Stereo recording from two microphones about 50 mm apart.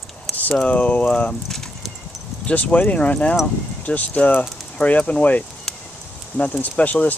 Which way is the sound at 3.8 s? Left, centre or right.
Left.